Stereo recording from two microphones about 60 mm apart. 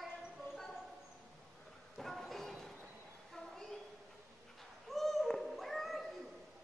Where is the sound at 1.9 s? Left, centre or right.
Centre.